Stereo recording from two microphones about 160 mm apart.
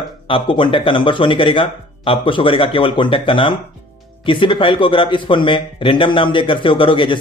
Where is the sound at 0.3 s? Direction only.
30° left (ahead or behind).